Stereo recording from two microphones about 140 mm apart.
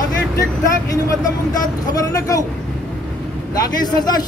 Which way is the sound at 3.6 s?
30° left (ahead or behind).